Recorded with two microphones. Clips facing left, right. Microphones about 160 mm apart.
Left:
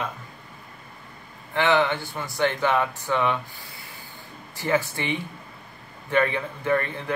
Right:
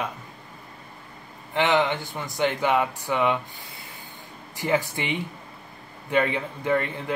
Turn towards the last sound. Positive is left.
turn(degrees=-15)  # may be behind; listen again after turning